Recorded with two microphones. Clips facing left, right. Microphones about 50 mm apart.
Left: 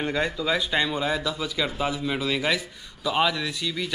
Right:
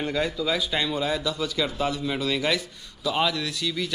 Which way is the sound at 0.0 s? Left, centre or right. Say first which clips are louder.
Even; centre.